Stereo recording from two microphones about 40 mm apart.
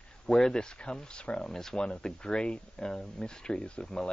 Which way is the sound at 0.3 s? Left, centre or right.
Centre.